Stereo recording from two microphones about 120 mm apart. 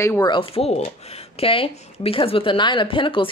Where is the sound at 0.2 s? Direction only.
45° left (ahead or behind).